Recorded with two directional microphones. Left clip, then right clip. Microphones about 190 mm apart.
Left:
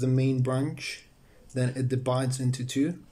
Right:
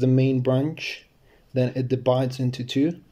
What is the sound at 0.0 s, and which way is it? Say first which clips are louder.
Speech: right 7 dB; 15° right (ahead or behind).